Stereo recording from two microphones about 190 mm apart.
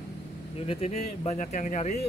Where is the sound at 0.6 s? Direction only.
30° left (ahead or behind).